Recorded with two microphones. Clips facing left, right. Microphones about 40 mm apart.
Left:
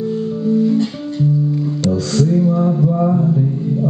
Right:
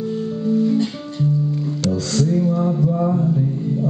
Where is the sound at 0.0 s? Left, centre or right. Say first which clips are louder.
Left 3 dB; centre.